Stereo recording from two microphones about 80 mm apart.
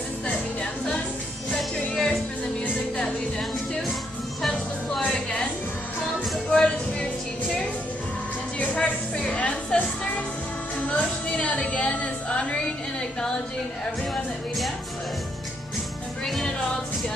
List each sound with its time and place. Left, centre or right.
1.5 s music: centre
6.5 s music: centre
8.5 s music: centre
10.9 s a sound: centre
16.3 s music: centre